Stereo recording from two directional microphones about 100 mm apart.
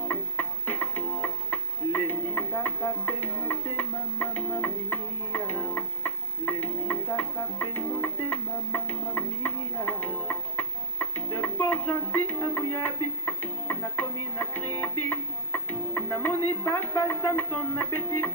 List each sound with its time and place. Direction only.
0.1 s music: 20° left (ahead or behind)